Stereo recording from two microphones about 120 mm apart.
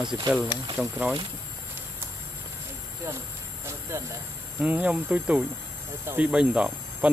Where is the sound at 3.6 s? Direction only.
25° right (ahead or behind).